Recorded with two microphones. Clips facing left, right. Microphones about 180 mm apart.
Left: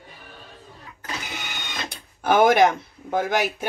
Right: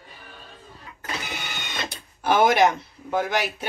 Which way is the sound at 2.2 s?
50° left (ahead or behind).